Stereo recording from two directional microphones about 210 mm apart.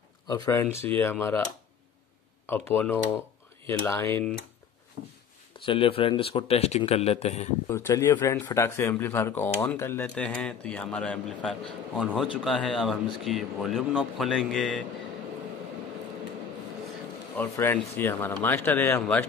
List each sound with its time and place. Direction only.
0.3 s a man's voice: 15° left (ahead or behind)
5.7 s a man's voice: 25° left (ahead or behind)
7.6 s a man's voice: 15° left (ahead or behind)
17.4 s a man's voice: 10° left (ahead or behind)